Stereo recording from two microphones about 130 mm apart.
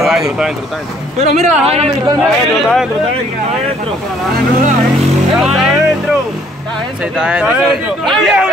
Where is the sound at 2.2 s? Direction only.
Centre (ahead or behind).